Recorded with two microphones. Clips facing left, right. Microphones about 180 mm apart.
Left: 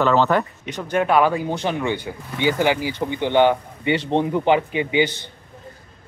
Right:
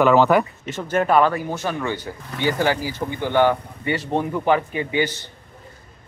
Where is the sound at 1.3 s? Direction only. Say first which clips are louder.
Left 2 dB; 15° left (ahead or behind).